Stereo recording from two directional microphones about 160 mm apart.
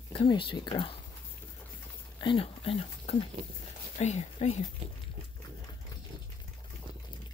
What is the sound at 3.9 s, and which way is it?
Speech, 45° left (ahead or behind).